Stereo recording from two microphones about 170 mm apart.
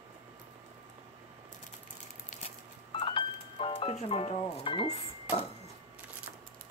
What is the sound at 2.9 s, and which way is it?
Telephone dialing, 30° left (ahead or behind).